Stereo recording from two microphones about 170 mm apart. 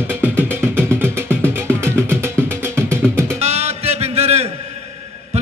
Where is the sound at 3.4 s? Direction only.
40° right (ahead or behind).